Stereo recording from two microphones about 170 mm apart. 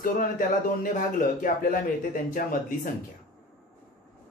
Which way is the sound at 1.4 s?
55° left (ahead or behind).